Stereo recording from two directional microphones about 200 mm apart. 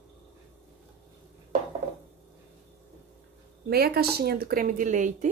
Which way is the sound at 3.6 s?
50° right (ahead or behind).